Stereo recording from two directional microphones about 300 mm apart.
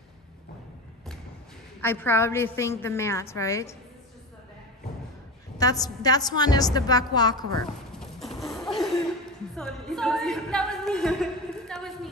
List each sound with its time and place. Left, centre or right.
1.8 s a woman's voice: centre
5.6 s a woman's voice: centre
8.0 s a sound: centre
9.6 s a woman's voice: centre